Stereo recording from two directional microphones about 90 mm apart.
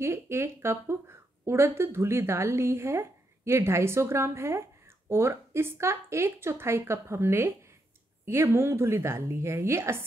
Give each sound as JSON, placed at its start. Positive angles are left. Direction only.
{"t": 0.0, "sound": "speech", "side_deg": -30}